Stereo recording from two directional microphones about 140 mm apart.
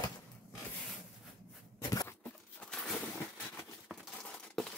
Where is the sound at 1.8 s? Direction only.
25° left (ahead or behind).